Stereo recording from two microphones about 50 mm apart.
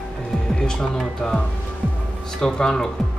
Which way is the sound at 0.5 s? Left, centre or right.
Centre.